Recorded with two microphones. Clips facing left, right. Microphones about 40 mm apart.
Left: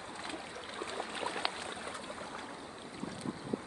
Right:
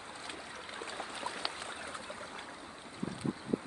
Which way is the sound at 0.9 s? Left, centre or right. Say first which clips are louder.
Left 3 dB; left.